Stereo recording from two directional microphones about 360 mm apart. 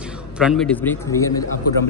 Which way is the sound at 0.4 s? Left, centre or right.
Centre.